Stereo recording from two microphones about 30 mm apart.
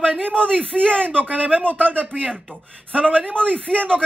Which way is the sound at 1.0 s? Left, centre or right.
Right.